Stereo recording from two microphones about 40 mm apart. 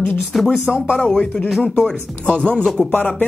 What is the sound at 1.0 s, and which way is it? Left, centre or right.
Speech, centre.